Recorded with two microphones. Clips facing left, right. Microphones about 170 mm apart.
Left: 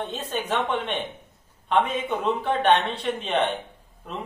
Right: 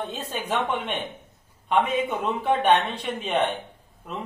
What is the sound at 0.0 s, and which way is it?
A man's voice, 10° right (ahead or behind).